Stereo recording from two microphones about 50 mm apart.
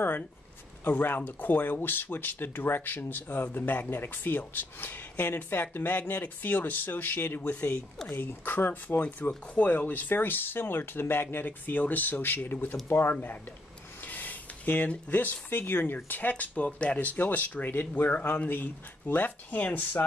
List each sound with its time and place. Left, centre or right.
0.8 s speech: left
8.8 s speech: left
13.1 s speech: left
17.1 s speech: left